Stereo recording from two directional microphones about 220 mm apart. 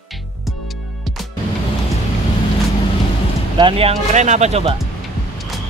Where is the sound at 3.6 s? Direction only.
25° right (ahead or behind).